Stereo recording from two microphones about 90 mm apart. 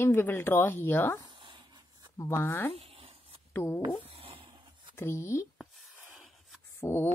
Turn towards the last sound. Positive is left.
turn(degrees=25)  # may be behind; listen again after turning